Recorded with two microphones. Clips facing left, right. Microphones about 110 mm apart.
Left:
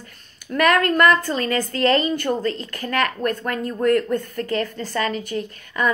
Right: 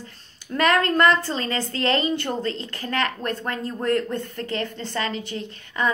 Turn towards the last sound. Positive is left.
turn(degrees=-25)  # may be behind; listen again after turning